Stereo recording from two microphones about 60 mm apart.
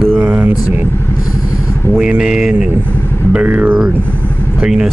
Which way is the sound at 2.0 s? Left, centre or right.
Centre.